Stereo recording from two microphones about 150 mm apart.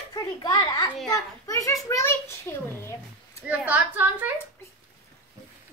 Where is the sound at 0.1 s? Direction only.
30° left (ahead or behind).